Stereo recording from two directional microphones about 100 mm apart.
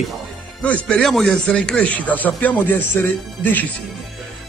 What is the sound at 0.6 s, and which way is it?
A man's voice, 10° left (ahead or behind).